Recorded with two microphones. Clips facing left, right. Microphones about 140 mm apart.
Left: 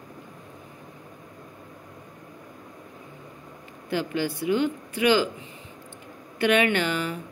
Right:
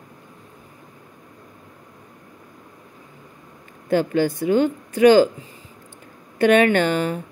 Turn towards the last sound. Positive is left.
turn(degrees=-45)  # may be behind; listen again after turning